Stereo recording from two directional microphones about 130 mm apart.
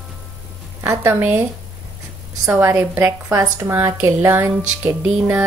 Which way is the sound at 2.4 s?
20° right (ahead or behind).